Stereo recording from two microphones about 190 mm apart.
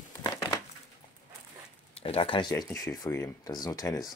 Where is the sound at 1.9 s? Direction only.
30° left (ahead or behind).